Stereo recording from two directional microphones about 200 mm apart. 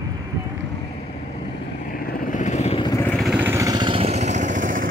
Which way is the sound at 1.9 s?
45° left (ahead or behind).